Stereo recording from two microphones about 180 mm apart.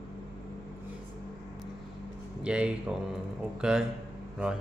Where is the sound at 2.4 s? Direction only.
5° right (ahead or behind).